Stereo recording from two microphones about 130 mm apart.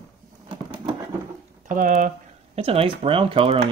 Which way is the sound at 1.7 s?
90° right.